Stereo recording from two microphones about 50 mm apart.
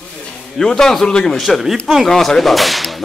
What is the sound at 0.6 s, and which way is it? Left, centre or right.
Speech, centre.